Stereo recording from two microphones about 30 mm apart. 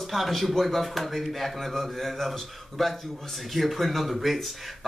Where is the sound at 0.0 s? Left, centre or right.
Centre.